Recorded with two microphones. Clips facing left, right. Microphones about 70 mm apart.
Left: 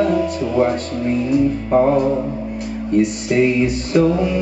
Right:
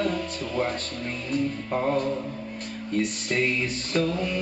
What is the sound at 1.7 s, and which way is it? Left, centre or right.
Music, left.